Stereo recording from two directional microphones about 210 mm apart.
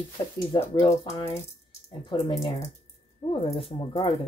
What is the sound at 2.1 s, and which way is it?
Speech, 15° left (ahead or behind).